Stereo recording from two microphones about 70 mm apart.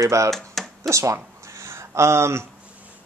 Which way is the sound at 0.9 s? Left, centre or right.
Right.